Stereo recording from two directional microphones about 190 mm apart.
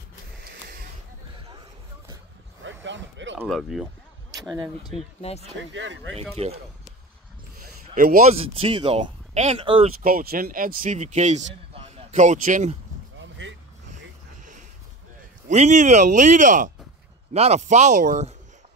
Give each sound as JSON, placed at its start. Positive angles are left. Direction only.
{"t": 0.4, "sound": "a sound", "side_deg": -55}
{"t": 2.6, "sound": "a sound", "side_deg": -75}
{"t": 3.4, "sound": "speech", "side_deg": 0}
{"t": 4.3, "sound": "a sound", "side_deg": -20}
{"t": 4.8, "sound": "speech", "side_deg": 30}
{"t": 5.7, "sound": "speech", "side_deg": -75}
{"t": 6.4, "sound": "speech", "side_deg": -30}
{"t": 7.9, "sound": "speech", "side_deg": -50}
{"t": 8.3, "sound": "speech", "side_deg": -30}
{"t": 10.0, "sound": "speech", "side_deg": -50}
{"t": 13.2, "sound": "vehicle", "side_deg": -75}
{"t": 15.4, "sound": "speech", "side_deg": -40}